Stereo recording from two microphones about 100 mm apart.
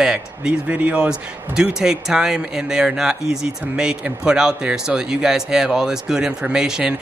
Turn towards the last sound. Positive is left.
turn(degrees=-5)  # may be behind; listen again after turning